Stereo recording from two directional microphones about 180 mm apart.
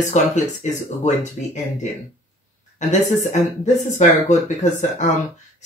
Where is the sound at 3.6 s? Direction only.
40° left (ahead or behind).